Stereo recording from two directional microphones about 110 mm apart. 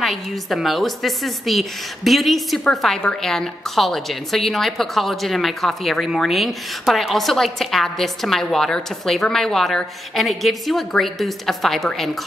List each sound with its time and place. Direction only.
0.0 s a woman's voice: centre (ahead or behind)